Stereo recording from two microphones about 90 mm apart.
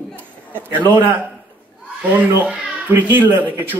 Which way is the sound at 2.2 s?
20° right (ahead or behind).